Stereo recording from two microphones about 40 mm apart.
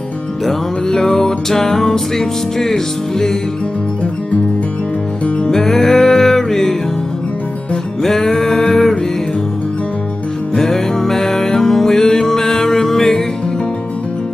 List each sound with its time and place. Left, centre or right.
0.5 s music: centre
5.5 s music: centre
8.0 s music: centre
10.5 s music: centre